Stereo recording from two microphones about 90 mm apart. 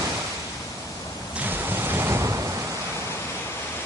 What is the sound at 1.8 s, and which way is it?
Ocean, 25° right (ahead or behind).